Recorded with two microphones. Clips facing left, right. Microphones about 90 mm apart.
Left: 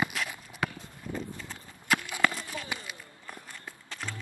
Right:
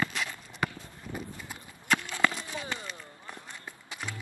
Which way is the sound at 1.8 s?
10° left (ahead or behind).